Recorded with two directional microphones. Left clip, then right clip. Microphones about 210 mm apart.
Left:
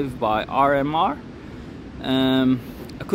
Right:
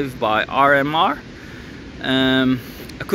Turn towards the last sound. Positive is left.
turn(degrees=0)  # may be behind; listen again after turning